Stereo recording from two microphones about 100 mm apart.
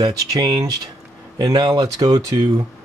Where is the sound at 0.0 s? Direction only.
45° right (ahead or behind).